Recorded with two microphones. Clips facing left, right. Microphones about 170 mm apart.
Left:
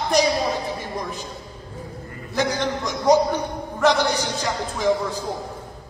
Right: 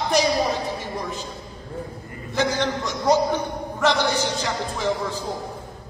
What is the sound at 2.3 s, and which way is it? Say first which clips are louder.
Music: even; 15° left (ahead or behind).